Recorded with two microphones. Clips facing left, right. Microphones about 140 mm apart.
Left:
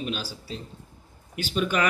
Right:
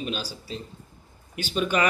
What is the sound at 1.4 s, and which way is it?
Speech, 5° left (ahead or behind).